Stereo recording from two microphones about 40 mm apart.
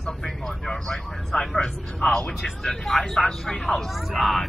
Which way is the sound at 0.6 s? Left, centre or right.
Centre.